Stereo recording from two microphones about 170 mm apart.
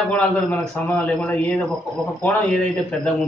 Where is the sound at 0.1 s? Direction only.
10° left (ahead or behind).